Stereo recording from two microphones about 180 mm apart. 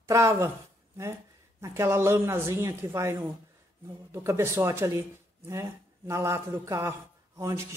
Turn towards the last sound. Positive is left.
turn(degrees=-15)  # may be behind; listen again after turning